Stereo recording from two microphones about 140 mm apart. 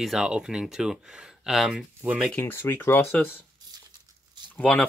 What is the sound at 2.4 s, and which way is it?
Speech, 15° left (ahead or behind).